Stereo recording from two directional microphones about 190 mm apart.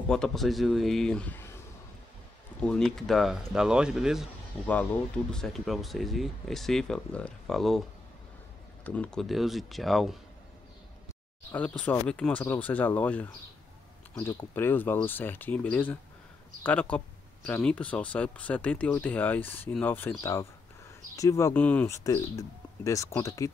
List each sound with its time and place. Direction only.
0.1 s speech: 5° left (ahead or behind)
2.6 s speech: 5° left (ahead or behind)
5.3 s speech: centre (ahead or behind)
8.8 s speech: 5° left (ahead or behind)
11.5 s speech: 10° left (ahead or behind)